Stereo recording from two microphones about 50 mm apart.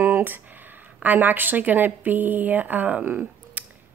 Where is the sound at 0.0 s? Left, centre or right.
Right.